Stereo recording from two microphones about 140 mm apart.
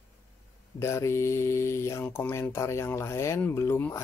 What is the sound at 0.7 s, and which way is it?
Speech, 20° left (ahead or behind).